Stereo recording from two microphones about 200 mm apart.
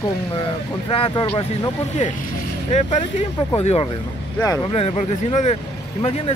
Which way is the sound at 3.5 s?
30° left (ahead or behind).